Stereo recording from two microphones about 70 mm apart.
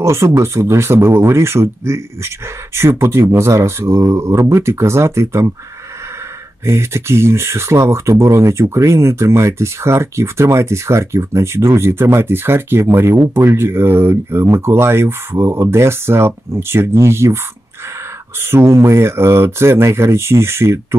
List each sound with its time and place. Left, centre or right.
0.0 s speech: right
6.6 s speech: right
18.4 s speech: right